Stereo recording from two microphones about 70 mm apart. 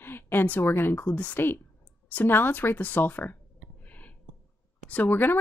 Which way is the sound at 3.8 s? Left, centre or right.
Left.